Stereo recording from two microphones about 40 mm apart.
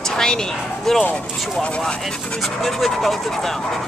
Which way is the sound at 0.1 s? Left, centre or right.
Centre.